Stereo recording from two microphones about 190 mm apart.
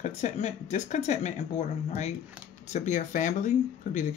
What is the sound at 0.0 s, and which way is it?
Speech, 40° left (ahead or behind).